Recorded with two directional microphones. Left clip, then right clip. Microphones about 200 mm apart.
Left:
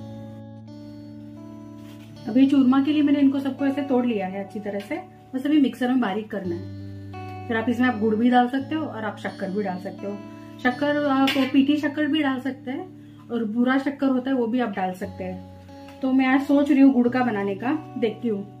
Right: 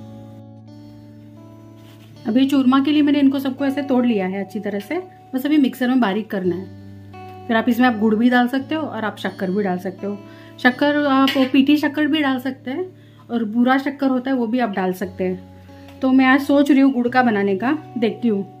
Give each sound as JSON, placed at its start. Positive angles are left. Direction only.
{"t": 2.3, "sound": "speech", "side_deg": -55}
{"t": 7.4, "sound": "a woman's voice", "side_deg": -50}